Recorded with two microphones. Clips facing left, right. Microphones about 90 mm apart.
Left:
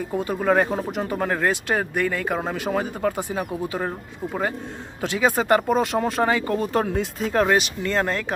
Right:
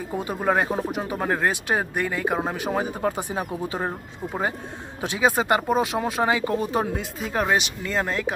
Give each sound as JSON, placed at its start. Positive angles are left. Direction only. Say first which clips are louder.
{"t": 0.2, "sound": "speech", "louder": "left 3 dB", "side_deg": -15}